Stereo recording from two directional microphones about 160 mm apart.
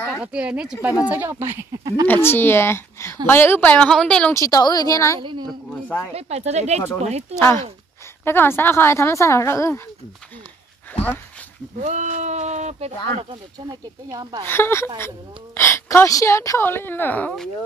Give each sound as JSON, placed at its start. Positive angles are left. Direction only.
{"t": 0.2, "sound": "speech", "side_deg": -5}
{"t": 2.2, "sound": "a woman's voice", "side_deg": 15}
{"t": 4.3, "sound": "a woman's voice", "side_deg": 20}
{"t": 5.2, "sound": "a woman's voice", "side_deg": -30}
{"t": 5.9, "sound": "speech", "side_deg": 10}
{"t": 6.1, "sound": "speech", "side_deg": -45}
{"t": 7.3, "sound": "a woman's voice", "side_deg": 15}
{"t": 10.9, "sound": "dog", "side_deg": 10}
{"t": 11.8, "sound": "speech", "side_deg": -50}
{"t": 13.7, "sound": "speech", "side_deg": -25}
{"t": 14.4, "sound": "a woman's voice", "side_deg": 15}